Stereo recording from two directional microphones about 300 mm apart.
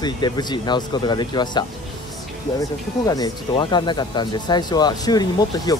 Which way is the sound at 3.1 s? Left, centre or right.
Centre.